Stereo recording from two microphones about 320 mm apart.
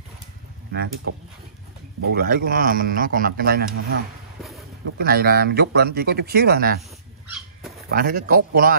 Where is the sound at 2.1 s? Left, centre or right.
Right.